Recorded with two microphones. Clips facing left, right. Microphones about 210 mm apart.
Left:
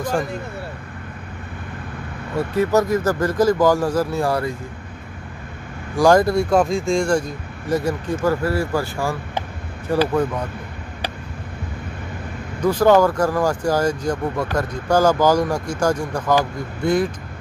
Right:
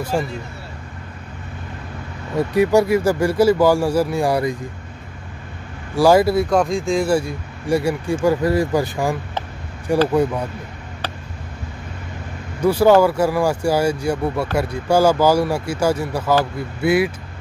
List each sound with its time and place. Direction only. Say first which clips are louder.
2.3 s speech: right 3 dB; 15° right (ahead or behind)
5.9 s speech: right 1 dB; 5° right (ahead or behind)
12.6 s speech: right 2 dB; 10° right (ahead or behind)